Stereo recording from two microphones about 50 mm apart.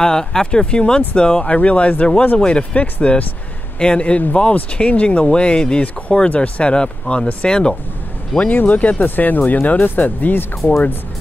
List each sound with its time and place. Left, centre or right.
0.0 s speech: centre
8.4 s speech: left